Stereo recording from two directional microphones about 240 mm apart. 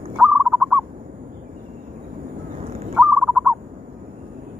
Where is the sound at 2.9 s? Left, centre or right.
Centre.